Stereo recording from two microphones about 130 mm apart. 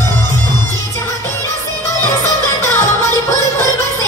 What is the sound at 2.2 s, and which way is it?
Music, 20° left (ahead or behind).